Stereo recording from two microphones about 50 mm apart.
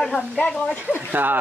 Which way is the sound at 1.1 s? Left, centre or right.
Right.